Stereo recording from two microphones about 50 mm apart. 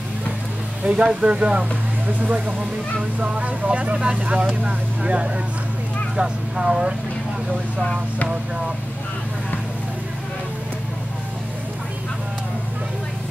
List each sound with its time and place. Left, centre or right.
0.8 s speech: right